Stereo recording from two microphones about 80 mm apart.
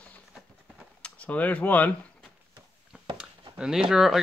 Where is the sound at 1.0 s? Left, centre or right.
Centre.